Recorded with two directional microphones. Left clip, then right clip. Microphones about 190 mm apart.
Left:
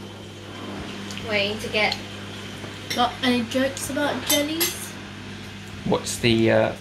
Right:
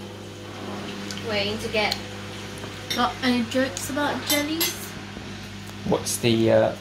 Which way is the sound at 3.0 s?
20° left (ahead or behind).